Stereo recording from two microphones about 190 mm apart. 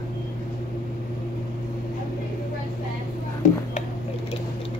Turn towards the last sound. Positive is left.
turn(degrees=40)  # may be behind; listen again after turning